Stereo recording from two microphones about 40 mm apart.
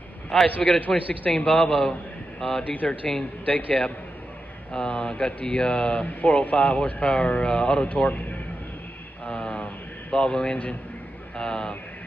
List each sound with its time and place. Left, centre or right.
0.6 s a man's voice: left
6.0 s a man's voice: left
9.2 s a sound: left
10.1 s speech: left